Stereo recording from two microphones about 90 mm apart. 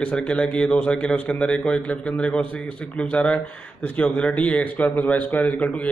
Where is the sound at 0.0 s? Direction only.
10° left (ahead or behind).